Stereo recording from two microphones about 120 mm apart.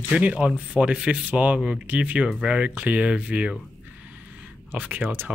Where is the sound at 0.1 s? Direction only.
10° right (ahead or behind).